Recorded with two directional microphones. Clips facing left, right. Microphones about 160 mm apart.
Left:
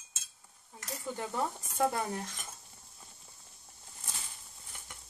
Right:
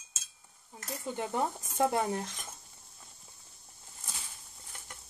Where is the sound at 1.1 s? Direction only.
20° right (ahead or behind).